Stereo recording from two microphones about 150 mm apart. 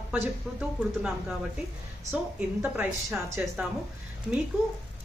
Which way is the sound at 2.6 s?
10° right (ahead or behind).